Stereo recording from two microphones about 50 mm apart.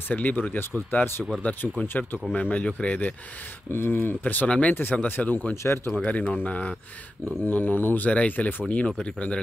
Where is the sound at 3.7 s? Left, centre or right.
Left.